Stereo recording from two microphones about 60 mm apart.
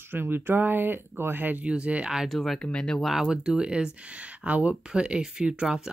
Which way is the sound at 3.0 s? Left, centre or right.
Centre.